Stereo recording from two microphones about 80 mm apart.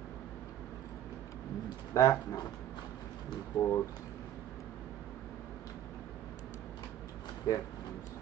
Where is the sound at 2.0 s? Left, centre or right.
Left.